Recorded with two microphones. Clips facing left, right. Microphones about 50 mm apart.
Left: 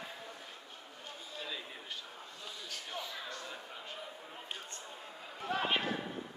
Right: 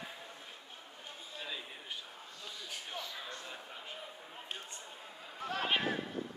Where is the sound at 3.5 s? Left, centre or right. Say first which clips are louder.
Left 1 dB; centre.